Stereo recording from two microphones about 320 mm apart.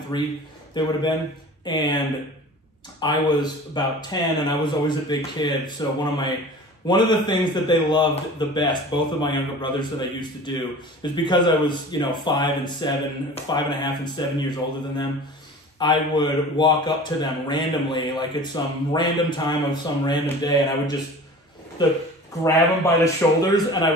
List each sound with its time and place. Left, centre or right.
0.1 s a man's voice: centre
1.6 s a man's voice: centre
22.4 s a man's voice: centre